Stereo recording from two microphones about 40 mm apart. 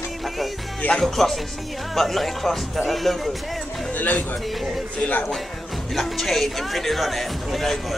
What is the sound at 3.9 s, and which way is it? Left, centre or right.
Speech, left.